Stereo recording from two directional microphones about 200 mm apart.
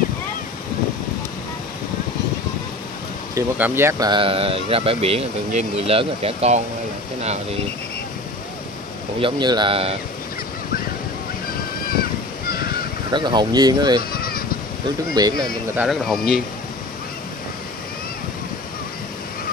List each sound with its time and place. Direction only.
3.3 s speech: 10° right (ahead or behind)
4.1 s speech: 25° right (ahead or behind)
9.2 s speech: 20° right (ahead or behind)
12.4 s goose: 50° left (ahead or behind)
13.1 s speech: 20° right (ahead or behind)
14.1 s honk: 50° left (ahead or behind)
15.2 s speech: 20° right (ahead or behind)
15.7 s speech: 5° right (ahead or behind)